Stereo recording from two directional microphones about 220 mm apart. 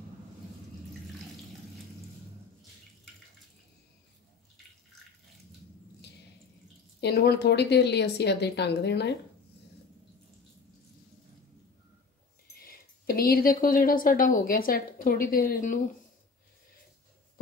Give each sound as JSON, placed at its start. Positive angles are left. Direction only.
{"t": 7.0, "sound": "speech", "side_deg": 50}
{"t": 12.5, "sound": "speech", "side_deg": 40}